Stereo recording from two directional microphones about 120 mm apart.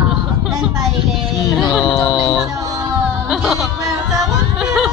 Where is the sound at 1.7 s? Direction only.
40° left (ahead or behind).